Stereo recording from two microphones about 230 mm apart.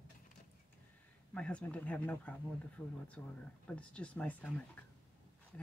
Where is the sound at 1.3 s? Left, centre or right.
Centre.